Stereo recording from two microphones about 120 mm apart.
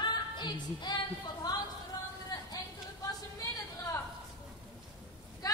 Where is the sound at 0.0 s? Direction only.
40° left (ahead or behind).